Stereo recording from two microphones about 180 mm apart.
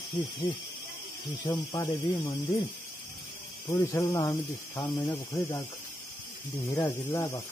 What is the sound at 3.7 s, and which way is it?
Speech, 15° left (ahead or behind).